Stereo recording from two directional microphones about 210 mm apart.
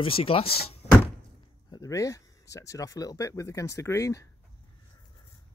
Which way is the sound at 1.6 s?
15° left (ahead or behind).